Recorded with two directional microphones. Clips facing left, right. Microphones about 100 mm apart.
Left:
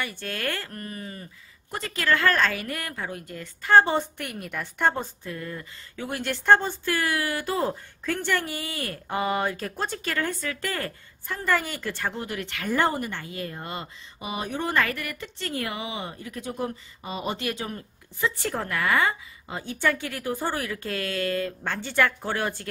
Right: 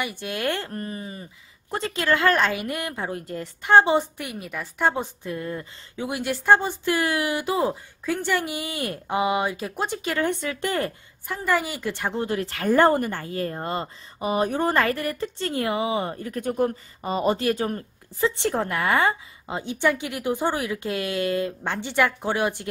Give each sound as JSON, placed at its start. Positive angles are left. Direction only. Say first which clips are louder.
{"t": 0.0, "sound": "a woman's voice", "louder": "right 4 dB", "side_deg": -15}
{"t": 1.7, "sound": "a woman's voice", "louder": "right 2 dB", "side_deg": -30}
{"t": 3.7, "sound": "a woman's voice", "louder": "right 2 dB", "side_deg": -15}
{"t": 6.0, "sound": "a woman's voice", "louder": "right 1 dB", "side_deg": -10}
{"t": 12.1, "sound": "speech", "louder": "right 6 dB", "side_deg": -30}
{"t": 18.4, "sound": "a woman's voice", "louder": "right 4 dB", "side_deg": -25}